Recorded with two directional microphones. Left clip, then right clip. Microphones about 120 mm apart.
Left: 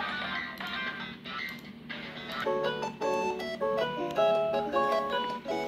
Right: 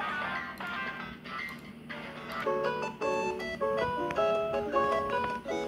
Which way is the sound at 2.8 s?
35° right (ahead or behind).